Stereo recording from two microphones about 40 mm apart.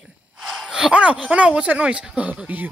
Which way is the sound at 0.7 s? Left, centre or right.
Centre.